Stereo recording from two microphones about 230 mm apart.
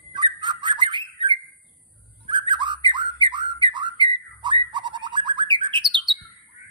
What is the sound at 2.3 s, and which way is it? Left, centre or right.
Whistling, centre.